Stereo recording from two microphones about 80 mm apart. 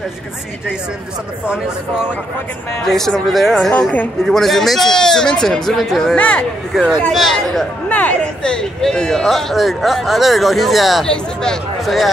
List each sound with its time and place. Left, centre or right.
1.5 s speech: centre
2.8 s speech: centre
6.1 s speech: centre
7.1 s speech: centre
7.9 s speech: centre